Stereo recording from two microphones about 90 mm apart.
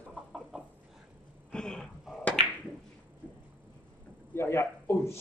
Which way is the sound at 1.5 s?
10° left (ahead or behind).